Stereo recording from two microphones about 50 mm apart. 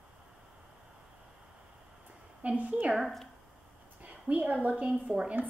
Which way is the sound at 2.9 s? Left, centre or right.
Centre.